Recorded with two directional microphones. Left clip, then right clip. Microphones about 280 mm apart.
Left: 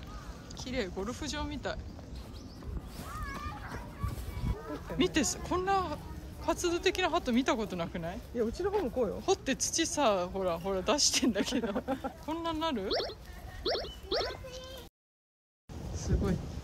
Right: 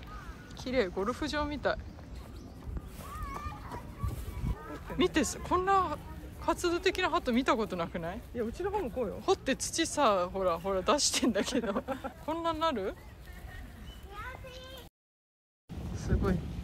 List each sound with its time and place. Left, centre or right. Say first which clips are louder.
0.6 s speech: right 5 dB; centre
4.9 s speech: right 1 dB; centre
8.4 s speech: left 3 dB; left
9.2 s speech: right 1 dB; centre
15.9 s a sound: right 1 dB; centre